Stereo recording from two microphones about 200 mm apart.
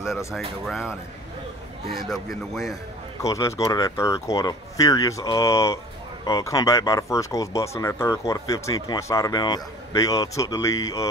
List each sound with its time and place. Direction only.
0.3 s speech: centre (ahead or behind)
2.0 s speech: centre (ahead or behind)
2.7 s speech: 15° left (ahead or behind)